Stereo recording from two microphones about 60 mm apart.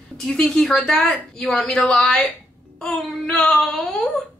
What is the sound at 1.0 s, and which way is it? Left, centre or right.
Speech, left.